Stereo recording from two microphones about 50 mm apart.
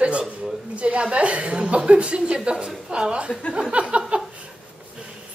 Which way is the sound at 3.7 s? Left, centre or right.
Right.